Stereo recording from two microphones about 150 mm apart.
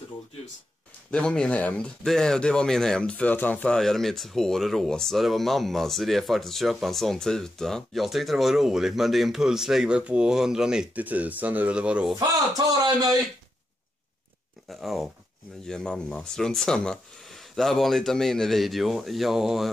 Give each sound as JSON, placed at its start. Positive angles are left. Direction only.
{"t": 1.1, "sound": "speech", "side_deg": 5}
{"t": 12.2, "sound": "speech", "side_deg": -25}
{"t": 14.7, "sound": "speech", "side_deg": 0}